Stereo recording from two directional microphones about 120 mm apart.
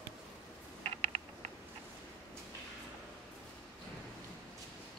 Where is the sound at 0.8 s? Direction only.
65° right (ahead or behind).